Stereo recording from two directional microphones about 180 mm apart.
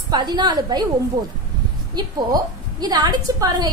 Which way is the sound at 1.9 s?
25° right (ahead or behind).